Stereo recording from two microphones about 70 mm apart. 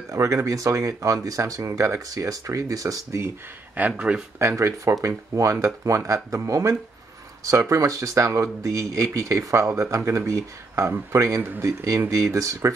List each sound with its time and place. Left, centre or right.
0.1 s speech: right
3.9 s speech: centre
4.4 s speech: right